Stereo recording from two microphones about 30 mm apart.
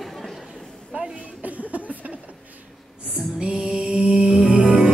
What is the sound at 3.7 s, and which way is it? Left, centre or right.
Mantra, right.